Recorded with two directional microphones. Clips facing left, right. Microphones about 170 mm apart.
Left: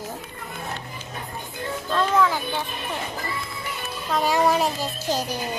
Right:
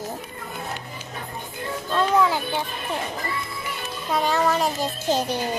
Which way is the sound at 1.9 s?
10° right (ahead or behind).